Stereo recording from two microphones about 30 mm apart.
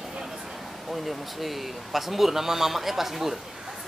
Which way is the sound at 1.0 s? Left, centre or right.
Centre.